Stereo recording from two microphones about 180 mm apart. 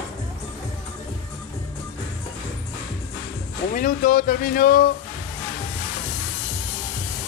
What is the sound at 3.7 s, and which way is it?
Speech, 50° left (ahead or behind).